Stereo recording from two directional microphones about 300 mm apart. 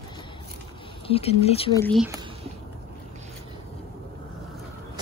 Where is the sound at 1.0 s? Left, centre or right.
Centre.